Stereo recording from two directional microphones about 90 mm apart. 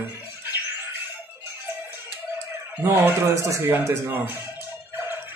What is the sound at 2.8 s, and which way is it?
Speech, 25° right (ahead or behind).